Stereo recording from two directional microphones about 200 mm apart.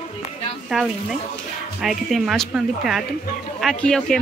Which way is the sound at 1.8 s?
Centre (ahead or behind).